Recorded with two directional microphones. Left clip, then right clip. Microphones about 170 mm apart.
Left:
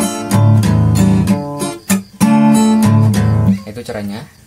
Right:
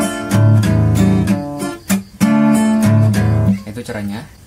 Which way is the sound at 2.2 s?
25° left (ahead or behind).